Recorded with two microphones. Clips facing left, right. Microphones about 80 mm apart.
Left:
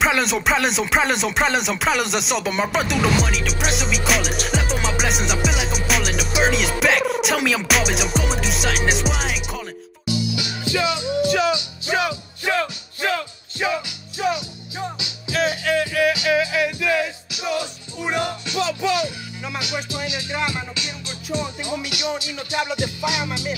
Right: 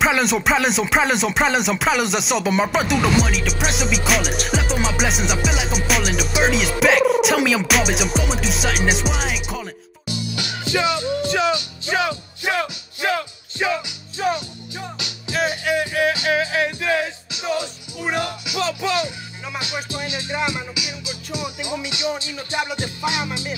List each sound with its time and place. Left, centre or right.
0.0 s music: centre
10.0 s music: right
12.4 s music: right
15.3 s music: centre
15.9 s music: right
18.6 s music: right
20.1 s music: right
20.3 s music: centre
21.8 s music: right